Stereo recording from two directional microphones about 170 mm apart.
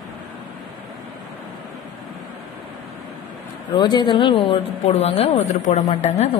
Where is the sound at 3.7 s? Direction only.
25° left (ahead or behind).